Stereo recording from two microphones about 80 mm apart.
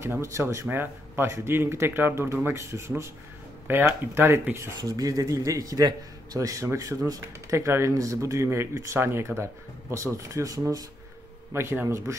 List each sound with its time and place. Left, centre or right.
0.0 s a man's voice: right
0.7 s a man's voice: right
4.7 s a man's voice: right
11.5 s a man's voice: right